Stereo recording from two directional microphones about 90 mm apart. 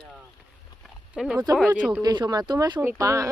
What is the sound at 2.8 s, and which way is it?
Speech, 35° right (ahead or behind).